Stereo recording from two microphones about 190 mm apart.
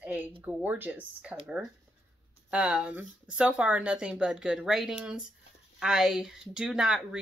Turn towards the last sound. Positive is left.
turn(degrees=-5)  # may be behind; listen again after turning